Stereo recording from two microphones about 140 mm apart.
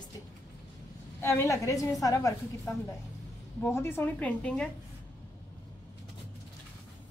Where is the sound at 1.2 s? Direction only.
20° left (ahead or behind).